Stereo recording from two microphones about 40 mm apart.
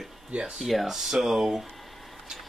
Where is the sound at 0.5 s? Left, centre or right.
Centre.